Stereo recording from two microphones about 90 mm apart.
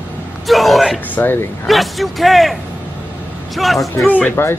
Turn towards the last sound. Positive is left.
turn(degrees=15)  # may be behind; listen again after turning